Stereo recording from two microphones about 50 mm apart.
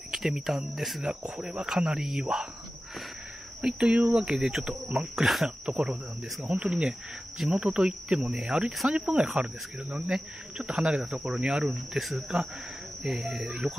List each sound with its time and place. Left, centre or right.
0.1 s speech: centre
0.7 s cricket: centre
1.3 s speech: centre
3.6 s speech: right; by 5.8 s centre
6.5 s speech: right
7.3 s speech: centre
7.6 s speech: centre
8.2 s speech: centre
9.0 s speech: centre
11.9 s cricket: centre
13.0 s speech: centre